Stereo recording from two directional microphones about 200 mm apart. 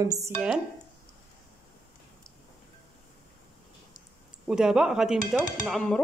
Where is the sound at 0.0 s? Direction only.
15° right (ahead or behind).